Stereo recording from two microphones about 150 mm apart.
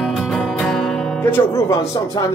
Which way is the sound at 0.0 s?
Centre (ahead or behind).